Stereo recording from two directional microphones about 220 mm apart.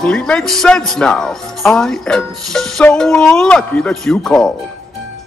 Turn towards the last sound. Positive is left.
turn(degrees=0)  # may be behind; listen again after turning